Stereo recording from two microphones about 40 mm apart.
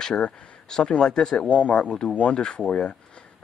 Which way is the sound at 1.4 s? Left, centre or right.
Left.